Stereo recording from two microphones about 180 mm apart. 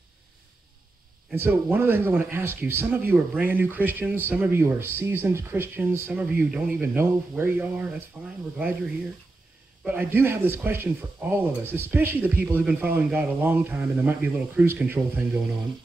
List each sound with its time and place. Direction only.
1.3 s speech: 10° right (ahead or behind)
9.8 s speech: 10° right (ahead or behind)